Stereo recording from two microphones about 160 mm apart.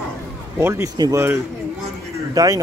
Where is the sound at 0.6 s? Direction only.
15° right (ahead or behind).